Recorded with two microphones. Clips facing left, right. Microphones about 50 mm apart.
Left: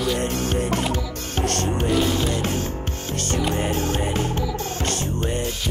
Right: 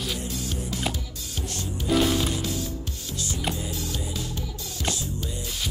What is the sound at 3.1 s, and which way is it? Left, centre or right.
Music, left.